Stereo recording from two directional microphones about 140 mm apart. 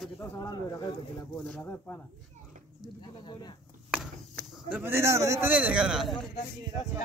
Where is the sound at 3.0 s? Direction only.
35° left (ahead or behind).